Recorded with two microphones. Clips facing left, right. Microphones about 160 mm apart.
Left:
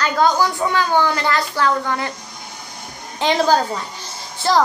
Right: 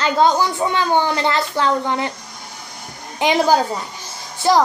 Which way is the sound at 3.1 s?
15° right (ahead or behind).